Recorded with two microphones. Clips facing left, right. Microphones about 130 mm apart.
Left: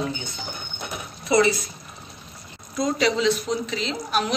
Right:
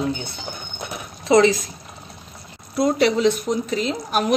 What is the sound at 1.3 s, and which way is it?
Speech, 90° right.